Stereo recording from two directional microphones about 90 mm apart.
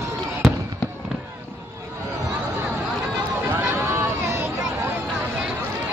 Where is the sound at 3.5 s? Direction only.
25° right (ahead or behind).